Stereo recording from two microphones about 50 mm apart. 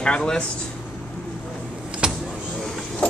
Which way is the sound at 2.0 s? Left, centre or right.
Centre.